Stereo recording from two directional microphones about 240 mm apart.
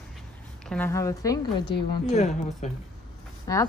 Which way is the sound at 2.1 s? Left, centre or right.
Left.